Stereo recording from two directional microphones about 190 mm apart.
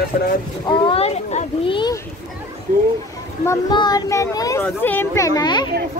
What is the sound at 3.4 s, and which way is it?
A child's voice, 20° left (ahead or behind).